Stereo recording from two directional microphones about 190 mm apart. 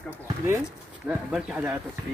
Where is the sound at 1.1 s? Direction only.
5° right (ahead or behind).